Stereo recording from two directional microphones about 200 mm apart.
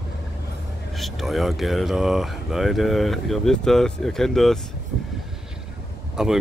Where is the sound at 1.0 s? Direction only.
Centre (ahead or behind).